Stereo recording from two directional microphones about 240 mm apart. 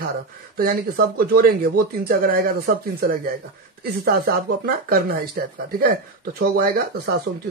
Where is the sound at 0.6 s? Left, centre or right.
Right.